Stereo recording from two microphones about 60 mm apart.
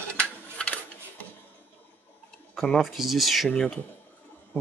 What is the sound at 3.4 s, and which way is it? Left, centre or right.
Speech, centre.